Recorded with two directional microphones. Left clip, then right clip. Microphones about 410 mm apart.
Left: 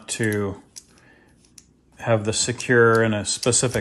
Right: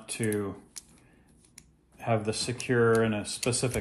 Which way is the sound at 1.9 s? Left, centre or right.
Left.